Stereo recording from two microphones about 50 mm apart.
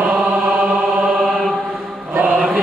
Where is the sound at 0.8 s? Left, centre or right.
Centre.